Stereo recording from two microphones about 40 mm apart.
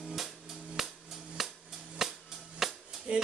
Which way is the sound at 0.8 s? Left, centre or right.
Centre.